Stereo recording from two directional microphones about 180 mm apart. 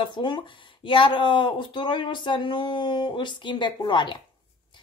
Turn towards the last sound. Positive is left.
turn(degrees=25)  # may be behind; listen again after turning